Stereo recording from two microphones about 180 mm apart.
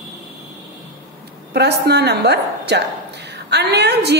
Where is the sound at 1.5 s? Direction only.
65° right (ahead or behind).